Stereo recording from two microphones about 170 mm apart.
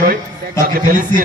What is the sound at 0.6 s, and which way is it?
Speech, 50° right (ahead or behind).